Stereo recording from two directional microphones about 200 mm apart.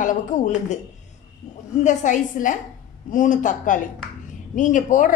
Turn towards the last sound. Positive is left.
turn(degrees=40)  # may be behind; listen again after turning